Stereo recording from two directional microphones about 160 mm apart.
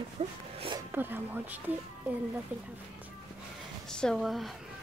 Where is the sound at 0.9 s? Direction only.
10° right (ahead or behind).